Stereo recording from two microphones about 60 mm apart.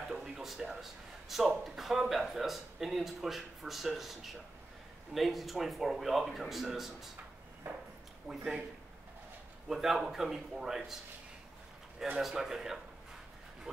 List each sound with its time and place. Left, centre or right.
0.1 s a sound: centre
1.3 s speech: centre
7.7 s a sound: right
8.3 s a man's voice: centre
9.7 s speech: centre
12.2 s a man's voice: centre